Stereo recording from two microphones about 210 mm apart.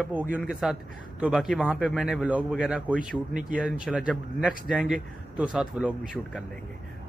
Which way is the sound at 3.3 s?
35° right (ahead or behind).